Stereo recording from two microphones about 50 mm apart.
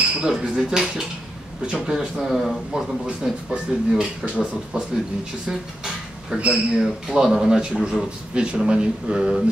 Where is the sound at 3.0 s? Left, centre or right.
Centre.